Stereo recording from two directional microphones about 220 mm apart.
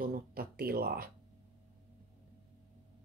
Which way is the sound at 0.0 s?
45° right (ahead or behind).